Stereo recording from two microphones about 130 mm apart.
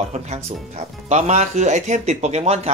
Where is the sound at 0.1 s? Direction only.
60° right (ahead or behind).